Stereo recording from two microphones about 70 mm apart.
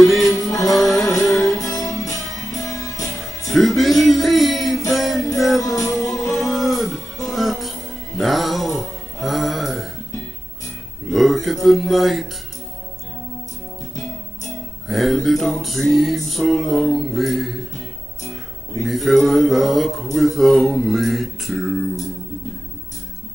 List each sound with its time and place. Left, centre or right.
0.0 s music: centre
1.6 s music: left
3.4 s music: centre
11.1 s a sound: centre
14.9 s music: centre